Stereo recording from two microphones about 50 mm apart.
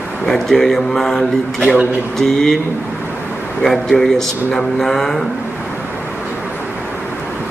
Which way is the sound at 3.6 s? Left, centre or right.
Centre.